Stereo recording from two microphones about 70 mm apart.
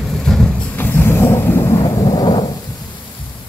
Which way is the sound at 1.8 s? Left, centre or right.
Left.